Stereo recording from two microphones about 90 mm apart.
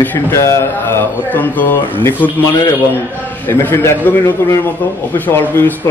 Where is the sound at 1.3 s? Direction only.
20° left (ahead or behind).